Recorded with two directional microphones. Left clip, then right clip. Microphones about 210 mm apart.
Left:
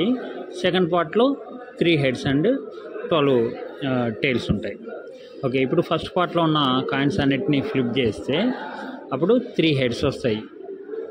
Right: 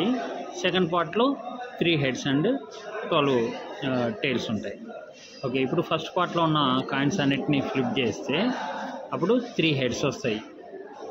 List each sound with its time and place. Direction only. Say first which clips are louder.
0.6 s speech: left 4 dB; 20° left (ahead or behind)